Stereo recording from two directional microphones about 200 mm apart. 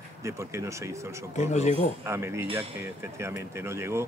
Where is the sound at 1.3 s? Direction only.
35° left (ahead or behind).